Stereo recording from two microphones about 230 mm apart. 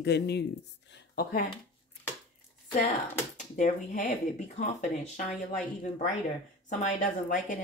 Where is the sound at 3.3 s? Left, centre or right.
Left.